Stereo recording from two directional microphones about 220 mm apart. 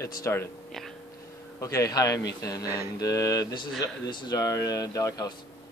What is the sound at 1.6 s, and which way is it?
Speech, 15° left (ahead or behind).